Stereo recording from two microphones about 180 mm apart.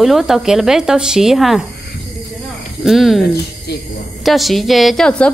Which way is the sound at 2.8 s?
Centre (ahead or behind).